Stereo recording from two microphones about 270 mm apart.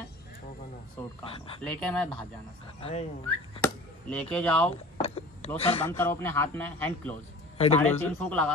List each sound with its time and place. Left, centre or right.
1.7 s speech: centre
2.8 s speech: left
3.6 s speech: centre
4.6 s a sound: left
5.6 s speech: left
5.9 s speech: centre
7.5 s a man's voice: left
7.8 s speech: centre